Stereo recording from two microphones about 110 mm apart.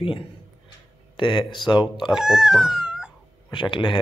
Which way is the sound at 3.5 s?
50° left (ahead or behind).